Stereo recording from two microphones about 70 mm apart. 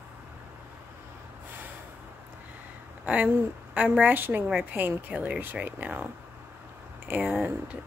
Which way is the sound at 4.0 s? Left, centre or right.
Right.